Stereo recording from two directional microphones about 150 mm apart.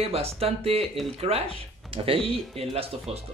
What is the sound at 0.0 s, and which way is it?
Speech, 40° right (ahead or behind).